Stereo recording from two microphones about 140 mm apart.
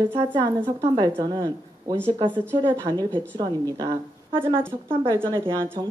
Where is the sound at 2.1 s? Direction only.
35° right (ahead or behind).